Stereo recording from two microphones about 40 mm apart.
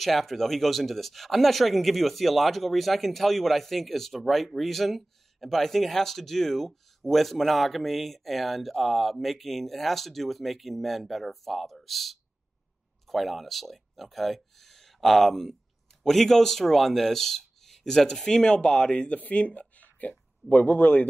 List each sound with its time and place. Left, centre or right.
0.0 s speech: centre; by 19.1 s left
19.1 s speech: left
19.8 s a sound: left
20.6 s speech: left